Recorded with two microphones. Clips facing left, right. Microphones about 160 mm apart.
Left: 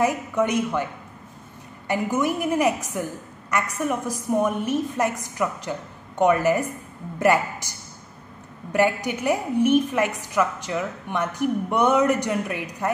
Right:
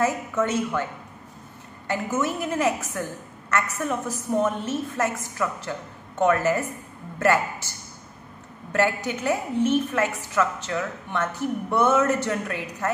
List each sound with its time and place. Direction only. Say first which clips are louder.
0.0 s a woman's voice: left 2 dB; 15° left (ahead or behind)
1.9 s a woman's voice: left 3 dB; 15° left (ahead or behind)
8.7 s a woman's voice: left 2 dB; 15° left (ahead or behind)